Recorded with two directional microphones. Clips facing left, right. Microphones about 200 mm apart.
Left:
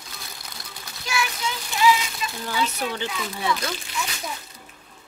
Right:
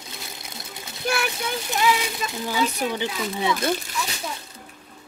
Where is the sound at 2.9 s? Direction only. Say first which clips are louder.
Right 3 dB; 15° right (ahead or behind).